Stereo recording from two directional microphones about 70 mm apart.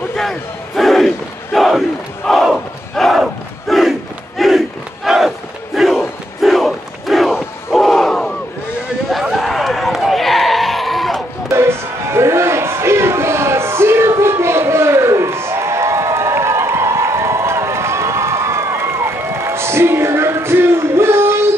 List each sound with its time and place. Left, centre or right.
0.1 s battle cry: centre
2.2 s crowd: centre
5.8 s battle cry: centre
9.1 s a sound: centre
11.5 s crowd: right